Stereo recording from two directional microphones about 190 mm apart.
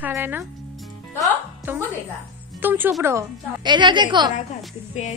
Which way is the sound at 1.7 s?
10° right (ahead or behind).